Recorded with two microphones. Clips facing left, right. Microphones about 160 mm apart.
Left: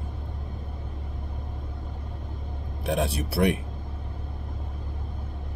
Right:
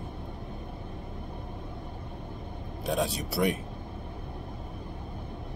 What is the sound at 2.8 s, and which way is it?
Speech, 65° left (ahead or behind).